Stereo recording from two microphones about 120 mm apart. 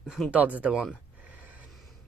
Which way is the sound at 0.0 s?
5° right (ahead or behind).